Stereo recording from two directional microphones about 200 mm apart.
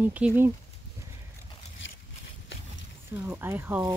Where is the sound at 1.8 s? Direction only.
70° left (ahead or behind).